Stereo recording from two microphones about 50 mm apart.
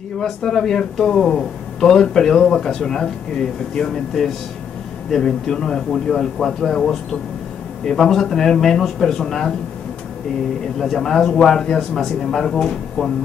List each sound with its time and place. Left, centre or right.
0.2 s speech: centre
10.8 s speech: centre